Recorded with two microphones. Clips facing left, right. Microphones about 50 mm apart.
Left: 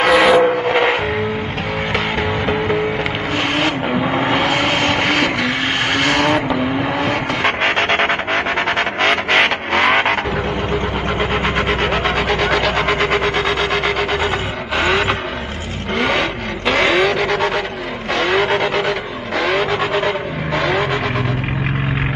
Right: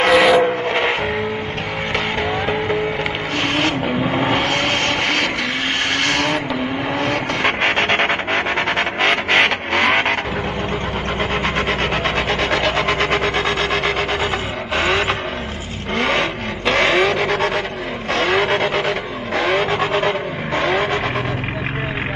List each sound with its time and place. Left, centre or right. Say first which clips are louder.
0.0 s a sound: left 1 dB; centre
2.4 s vehicle: left 2 dB; centre
11.1 s rub: left 1 dB; centre
14.8 s vehicle: left 2 dB; centre